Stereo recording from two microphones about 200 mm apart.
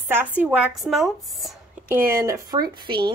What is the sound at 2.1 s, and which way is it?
Speech, 15° right (ahead or behind).